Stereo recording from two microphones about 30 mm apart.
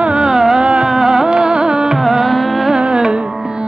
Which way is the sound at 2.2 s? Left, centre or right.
Centre.